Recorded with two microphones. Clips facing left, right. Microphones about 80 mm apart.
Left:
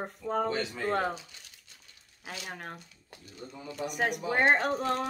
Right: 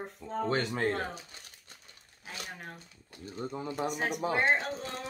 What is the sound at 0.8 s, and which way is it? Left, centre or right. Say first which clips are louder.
Speech: left 3 dB; left.